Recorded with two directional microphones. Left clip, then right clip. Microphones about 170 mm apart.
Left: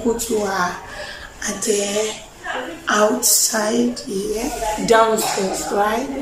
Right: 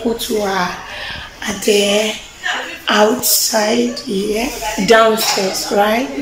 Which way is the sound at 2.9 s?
5° right (ahead or behind).